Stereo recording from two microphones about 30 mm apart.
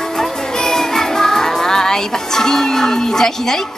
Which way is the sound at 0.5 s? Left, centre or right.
Centre.